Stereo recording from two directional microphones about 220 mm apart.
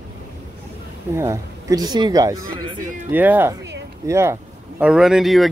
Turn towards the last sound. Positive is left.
turn(degrees=0)  # may be behind; listen again after turning